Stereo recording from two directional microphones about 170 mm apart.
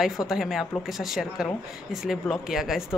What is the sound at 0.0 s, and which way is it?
A woman's voice, centre (ahead or behind).